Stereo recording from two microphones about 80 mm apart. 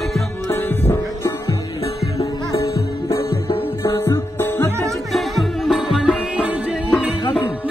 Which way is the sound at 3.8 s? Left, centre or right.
Left.